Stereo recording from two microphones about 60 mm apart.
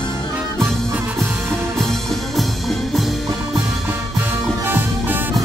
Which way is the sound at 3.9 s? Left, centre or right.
Right.